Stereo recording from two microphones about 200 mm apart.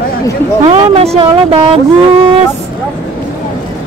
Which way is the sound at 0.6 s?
30° right (ahead or behind).